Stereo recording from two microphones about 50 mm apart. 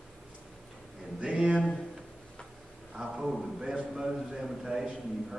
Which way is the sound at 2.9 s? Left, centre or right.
Centre.